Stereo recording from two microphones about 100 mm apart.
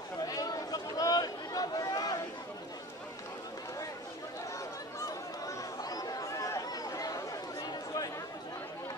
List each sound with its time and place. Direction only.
0.2 s chatter: 40° left (ahead or behind)
5.0 s chatter: 40° left (ahead or behind)